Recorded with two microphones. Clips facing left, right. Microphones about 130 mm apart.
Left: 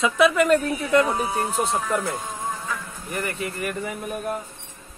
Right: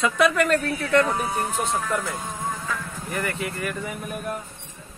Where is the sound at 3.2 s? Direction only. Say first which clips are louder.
Even; 35° left (ahead or behind).